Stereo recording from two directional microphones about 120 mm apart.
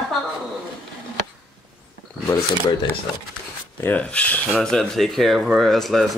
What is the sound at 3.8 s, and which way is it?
Speech, 15° left (ahead or behind).